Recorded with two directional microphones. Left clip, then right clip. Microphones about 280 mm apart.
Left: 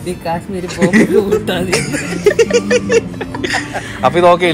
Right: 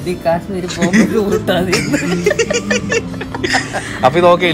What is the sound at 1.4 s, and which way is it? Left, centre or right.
Speech, centre.